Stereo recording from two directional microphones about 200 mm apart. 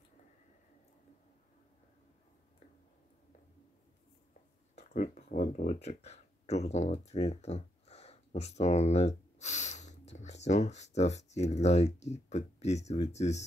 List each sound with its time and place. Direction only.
4.7 s speech: 35° left (ahead or behind)